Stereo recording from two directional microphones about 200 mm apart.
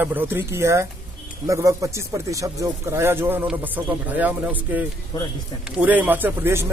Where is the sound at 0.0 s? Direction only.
10° right (ahead or behind).